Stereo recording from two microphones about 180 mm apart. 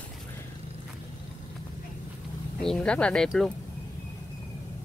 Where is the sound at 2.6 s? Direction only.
5° left (ahead or behind).